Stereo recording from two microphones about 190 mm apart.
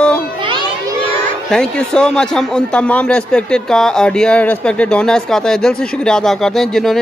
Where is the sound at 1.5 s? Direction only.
5° left (ahead or behind).